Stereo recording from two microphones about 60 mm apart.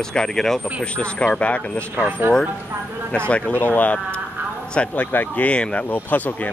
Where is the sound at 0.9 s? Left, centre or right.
Centre.